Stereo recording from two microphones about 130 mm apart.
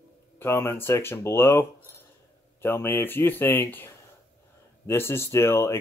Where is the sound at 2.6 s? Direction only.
20° left (ahead or behind).